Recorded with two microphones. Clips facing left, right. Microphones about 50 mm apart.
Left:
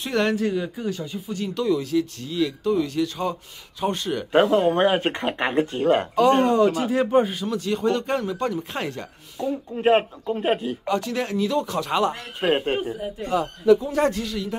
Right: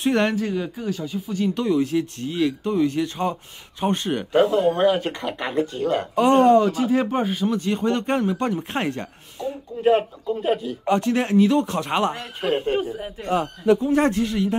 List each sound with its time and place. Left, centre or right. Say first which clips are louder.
0.0 s speech: right 3 dB; right
0.3 s speech: left 1 dB; centre
1.5 s speech: even; right
4.3 s speech: even; left
6.7 s speech: left 1 dB; centre
7.4 s speech: right 1 dB; right
9.8 s a man's voice: right 1 dB; left
10.9 s speech: right 5 dB; right
12.4 s a man's voice: left 1 dB; left
12.7 s speech: right 1 dB; right
13.7 s speech: even; right